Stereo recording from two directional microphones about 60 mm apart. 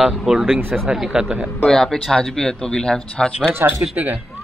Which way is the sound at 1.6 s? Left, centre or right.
Centre.